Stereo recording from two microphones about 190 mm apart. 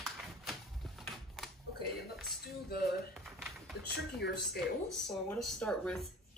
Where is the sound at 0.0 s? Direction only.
Centre (ahead or behind).